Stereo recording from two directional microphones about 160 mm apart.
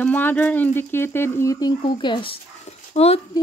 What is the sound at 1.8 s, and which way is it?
Speech, 30° left (ahead or behind).